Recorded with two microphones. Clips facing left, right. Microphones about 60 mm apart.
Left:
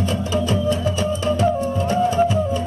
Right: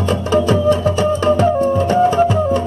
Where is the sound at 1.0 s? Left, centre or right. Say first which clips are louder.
Right 4 dB; right.